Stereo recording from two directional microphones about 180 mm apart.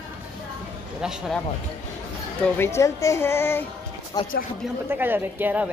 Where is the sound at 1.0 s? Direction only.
5° right (ahead or behind).